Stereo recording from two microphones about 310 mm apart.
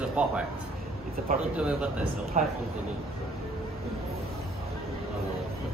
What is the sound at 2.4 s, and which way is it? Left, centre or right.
Speech, right.